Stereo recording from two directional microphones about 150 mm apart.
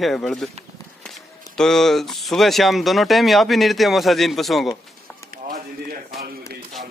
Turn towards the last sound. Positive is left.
turn(degrees=-80)